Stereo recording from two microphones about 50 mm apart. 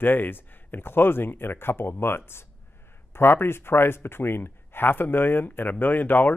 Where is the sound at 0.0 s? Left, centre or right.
Left.